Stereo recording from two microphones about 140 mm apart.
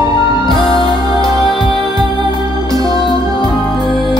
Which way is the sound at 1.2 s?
Centre (ahead or behind).